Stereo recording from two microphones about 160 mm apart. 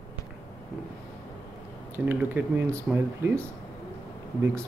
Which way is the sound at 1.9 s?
15° right (ahead or behind).